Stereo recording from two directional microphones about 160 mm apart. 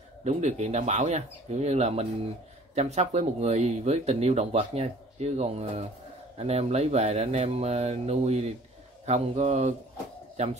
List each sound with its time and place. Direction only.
0.2 s speech: 45° right (ahead or behind)